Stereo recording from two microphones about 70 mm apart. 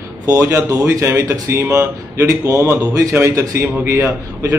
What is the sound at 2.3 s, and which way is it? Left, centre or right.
A man's voice, right.